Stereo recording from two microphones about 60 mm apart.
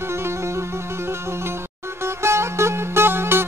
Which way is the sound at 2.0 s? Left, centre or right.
Right.